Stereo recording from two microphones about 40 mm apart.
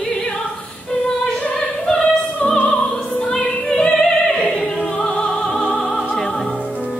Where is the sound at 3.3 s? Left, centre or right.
Left.